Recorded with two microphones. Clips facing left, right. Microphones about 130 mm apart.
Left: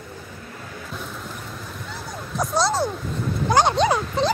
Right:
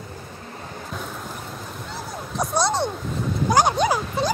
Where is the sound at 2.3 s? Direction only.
Centre (ahead or behind).